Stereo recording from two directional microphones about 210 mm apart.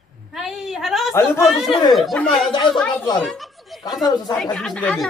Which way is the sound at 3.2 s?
Centre (ahead or behind).